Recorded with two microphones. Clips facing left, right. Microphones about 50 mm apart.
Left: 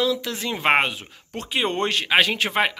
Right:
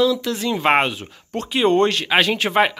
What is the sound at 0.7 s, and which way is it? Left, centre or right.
A man's voice, centre.